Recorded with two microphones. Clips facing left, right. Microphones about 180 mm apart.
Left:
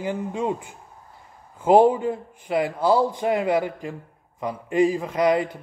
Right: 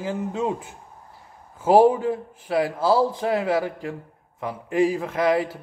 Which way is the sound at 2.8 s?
15° left (ahead or behind).